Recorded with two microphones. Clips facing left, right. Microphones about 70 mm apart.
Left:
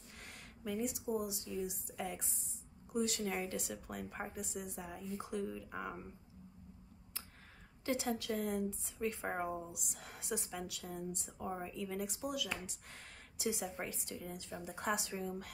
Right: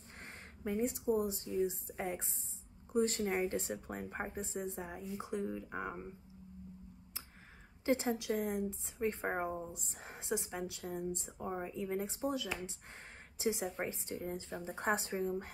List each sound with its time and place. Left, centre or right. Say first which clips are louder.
0.2 s a woman's voice: right 4 dB; right
7.8 s a woman's voice: right 4 dB; right